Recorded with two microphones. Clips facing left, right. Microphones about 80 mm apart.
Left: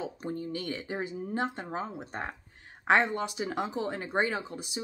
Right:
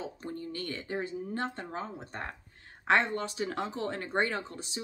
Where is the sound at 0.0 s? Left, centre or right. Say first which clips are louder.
Left 3 dB; centre.